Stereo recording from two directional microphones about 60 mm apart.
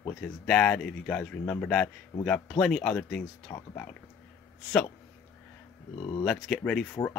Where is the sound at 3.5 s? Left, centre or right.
Left.